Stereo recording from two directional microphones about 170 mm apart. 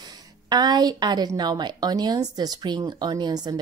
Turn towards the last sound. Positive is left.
turn(degrees=-25)  # may be behind; listen again after turning